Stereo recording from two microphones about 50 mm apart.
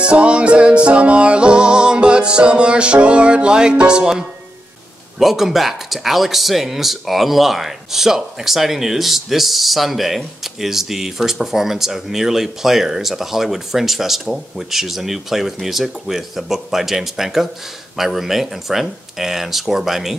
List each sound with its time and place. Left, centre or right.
0.0 s music: right
5.2 s speech: centre